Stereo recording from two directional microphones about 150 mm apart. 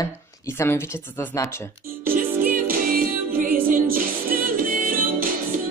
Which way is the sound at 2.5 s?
70° right (ahead or behind).